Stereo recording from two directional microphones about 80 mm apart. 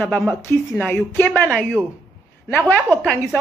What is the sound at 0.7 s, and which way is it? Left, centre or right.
Speech, left.